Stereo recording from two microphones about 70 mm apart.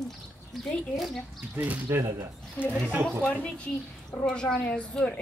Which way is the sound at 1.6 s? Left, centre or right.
Right.